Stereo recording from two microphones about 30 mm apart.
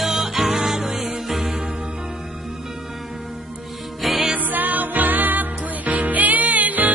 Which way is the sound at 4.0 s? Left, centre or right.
Centre.